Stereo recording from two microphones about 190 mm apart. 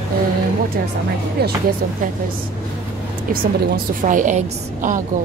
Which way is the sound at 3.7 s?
45° right (ahead or behind).